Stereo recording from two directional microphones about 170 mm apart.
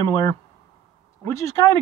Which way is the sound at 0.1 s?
20° left (ahead or behind).